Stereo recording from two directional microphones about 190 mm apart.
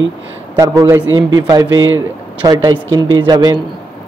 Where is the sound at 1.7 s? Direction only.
90° right.